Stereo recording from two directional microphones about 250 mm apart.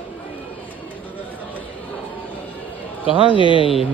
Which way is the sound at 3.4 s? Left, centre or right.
Left.